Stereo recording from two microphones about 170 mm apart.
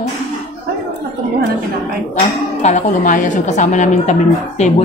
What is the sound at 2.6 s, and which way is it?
A woman's voice, 45° left (ahead or behind).